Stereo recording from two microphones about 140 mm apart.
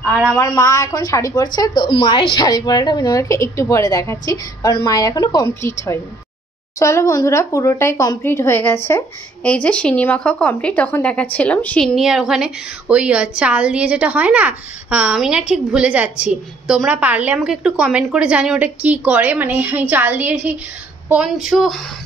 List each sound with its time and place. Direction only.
0.4 s a woman's voice: 20° left (ahead or behind); by 21.8 s centre (ahead or behind)